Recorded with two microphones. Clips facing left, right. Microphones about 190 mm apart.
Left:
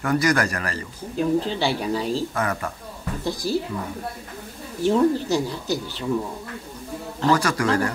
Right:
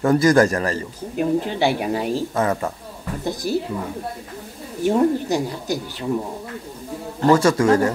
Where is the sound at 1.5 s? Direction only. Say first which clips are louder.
Right 3 dB; 55° right (ahead or behind).